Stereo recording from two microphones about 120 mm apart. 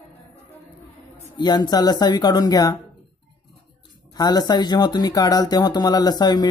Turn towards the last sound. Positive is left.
turn(degrees=35)  # may be behind; listen again after turning